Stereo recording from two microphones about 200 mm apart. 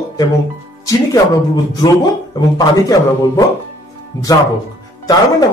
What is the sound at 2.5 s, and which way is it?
Speech, 20° left (ahead or behind).